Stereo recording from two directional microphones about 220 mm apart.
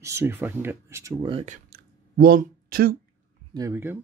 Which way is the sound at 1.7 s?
40° right (ahead or behind).